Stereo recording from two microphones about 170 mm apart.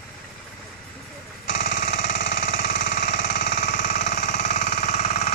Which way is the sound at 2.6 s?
60° left (ahead or behind).